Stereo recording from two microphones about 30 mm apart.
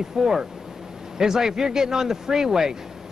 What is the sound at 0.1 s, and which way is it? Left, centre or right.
A man's voice, centre.